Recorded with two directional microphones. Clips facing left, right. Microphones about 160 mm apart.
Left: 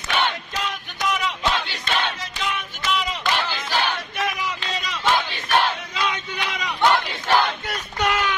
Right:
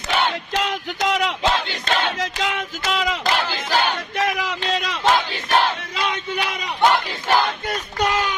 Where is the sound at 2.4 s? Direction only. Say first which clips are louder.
Left 1 dB; 90° right.